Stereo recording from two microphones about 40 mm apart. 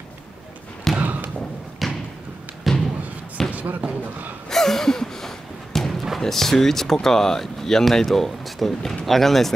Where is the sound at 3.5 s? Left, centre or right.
Right.